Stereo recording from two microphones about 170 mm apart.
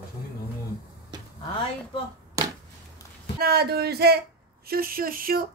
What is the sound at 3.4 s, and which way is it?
Speech, 65° right (ahead or behind).